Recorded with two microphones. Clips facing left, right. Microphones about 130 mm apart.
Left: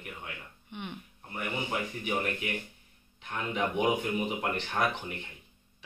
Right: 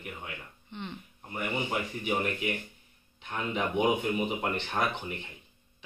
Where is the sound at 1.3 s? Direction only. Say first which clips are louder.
Right 2 dB; 15° right (ahead or behind).